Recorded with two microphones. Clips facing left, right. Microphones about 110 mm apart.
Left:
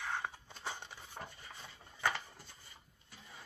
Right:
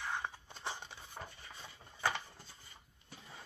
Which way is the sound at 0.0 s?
Centre (ahead or behind).